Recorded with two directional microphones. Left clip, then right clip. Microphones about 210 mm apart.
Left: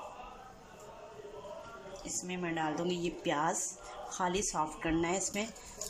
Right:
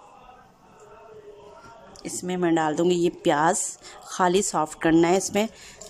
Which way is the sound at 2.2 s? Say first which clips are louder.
Right 13 dB; 35° right (ahead or behind).